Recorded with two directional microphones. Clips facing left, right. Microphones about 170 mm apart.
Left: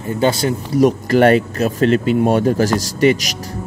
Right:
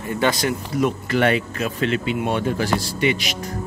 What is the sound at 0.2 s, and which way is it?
Speech, 30° left (ahead or behind).